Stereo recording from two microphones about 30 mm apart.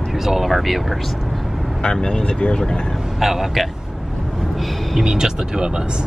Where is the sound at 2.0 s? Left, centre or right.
Left.